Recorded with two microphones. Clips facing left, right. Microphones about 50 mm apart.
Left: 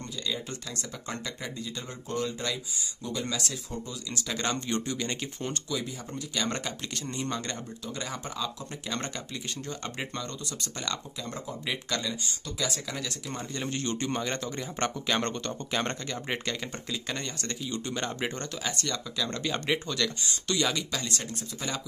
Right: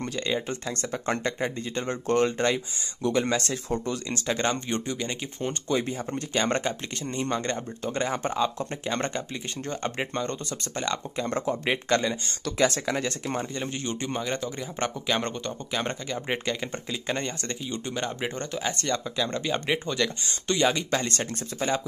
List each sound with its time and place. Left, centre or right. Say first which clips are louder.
0.7 s speech: right 8 dB; right
3.7 s speech: right 9 dB; right
4.1 s speech: right 4 dB; right
5.7 s speech: right 7 dB; right
8.8 s speech: right 5 dB; right
11.1 s speech: right 9 dB; right
11.7 s speech: right 7 dB; right
12.5 s speech: right 10 dB; right
13.6 s a man's voice: right 1 dB; centre
19.2 s speech: even; centre
20.2 s speech: right 7 dB; right